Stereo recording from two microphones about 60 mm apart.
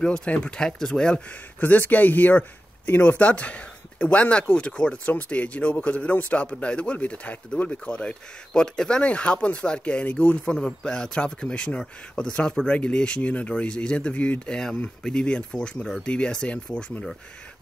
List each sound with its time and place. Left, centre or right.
0.0 s speech: centre
1.6 s speech: left
10.4 s speech: centre